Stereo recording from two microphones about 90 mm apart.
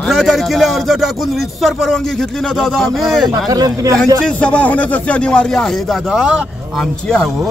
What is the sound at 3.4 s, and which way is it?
Speech, 45° right (ahead or behind).